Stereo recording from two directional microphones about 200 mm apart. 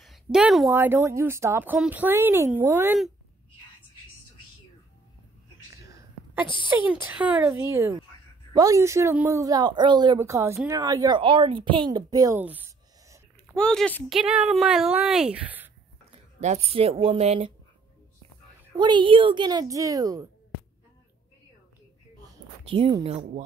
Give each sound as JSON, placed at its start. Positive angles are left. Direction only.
{"t": 0.0, "sound": "a sound", "side_deg": 0}
{"t": 0.7, "sound": "speech", "side_deg": -10}
{"t": 5.9, "sound": "a sound", "side_deg": -15}
{"t": 6.7, "sound": "speech", "side_deg": -10}
{"t": 13.6, "sound": "speech", "side_deg": 5}
{"t": 16.3, "sound": "speech", "side_deg": -35}
{"t": 18.8, "sound": "a woman's voice", "side_deg": -25}
{"t": 22.7, "sound": "a woman's voice", "side_deg": -25}